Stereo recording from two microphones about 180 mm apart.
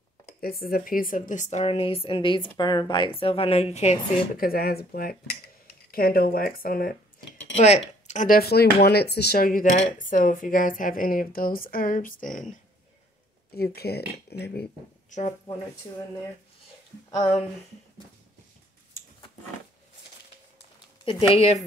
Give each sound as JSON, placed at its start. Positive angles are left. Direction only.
{"t": 0.4, "sound": "a woman's voice", "side_deg": 55}
{"t": 4.4, "sound": "speech", "side_deg": 55}
{"t": 7.5, "sound": "speech", "side_deg": 35}
{"t": 13.6, "sound": "speech", "side_deg": 60}
{"t": 15.0, "sound": "speech", "side_deg": 40}
{"t": 17.1, "sound": "speech", "side_deg": 25}
{"t": 21.0, "sound": "speech", "side_deg": 30}